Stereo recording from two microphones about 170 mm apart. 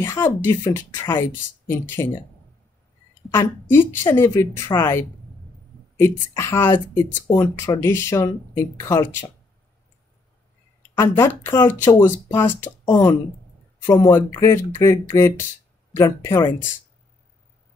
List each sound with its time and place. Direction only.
0.0 s speech: 15° left (ahead or behind)
3.7 s speech: 10° left (ahead or behind)
11.0 s speech: 15° left (ahead or behind)